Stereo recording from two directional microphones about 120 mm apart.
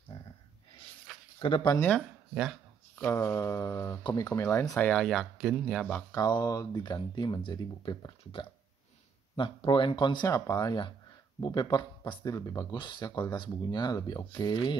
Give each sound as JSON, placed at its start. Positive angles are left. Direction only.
{"t": 0.1, "sound": "a sound", "side_deg": 40}
{"t": 1.4, "sound": "speech", "side_deg": 40}
{"t": 2.0, "sound": "speech", "side_deg": 0}
{"t": 3.1, "sound": "a sound", "side_deg": 25}
{"t": 4.0, "sound": "speech", "side_deg": 30}
{"t": 4.7, "sound": "speech", "side_deg": 5}
{"t": 6.1, "sound": "speech", "side_deg": 35}
{"t": 8.2, "sound": "speech", "side_deg": 50}
{"t": 12.7, "sound": "speech", "side_deg": 40}